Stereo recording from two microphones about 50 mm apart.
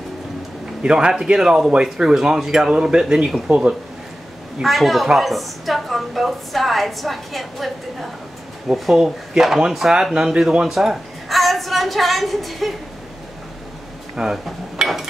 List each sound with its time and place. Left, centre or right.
0.8 s speech: centre
4.6 s a woman's voice: centre
8.9 s a woman's voice: centre
14.1 s dishes: centre